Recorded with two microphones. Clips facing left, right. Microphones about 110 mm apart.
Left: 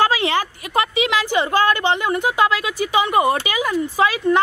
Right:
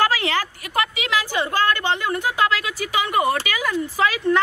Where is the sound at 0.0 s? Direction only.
20° left (ahead or behind).